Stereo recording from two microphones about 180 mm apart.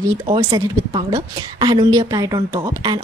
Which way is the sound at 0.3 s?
25° right (ahead or behind).